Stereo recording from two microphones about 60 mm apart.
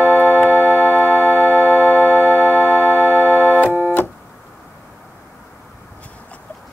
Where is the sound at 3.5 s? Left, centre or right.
Right.